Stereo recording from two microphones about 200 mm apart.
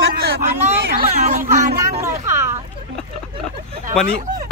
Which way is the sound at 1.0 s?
40° right (ahead or behind).